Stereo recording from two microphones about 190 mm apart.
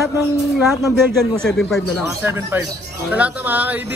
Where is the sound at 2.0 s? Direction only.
10° right (ahead or behind).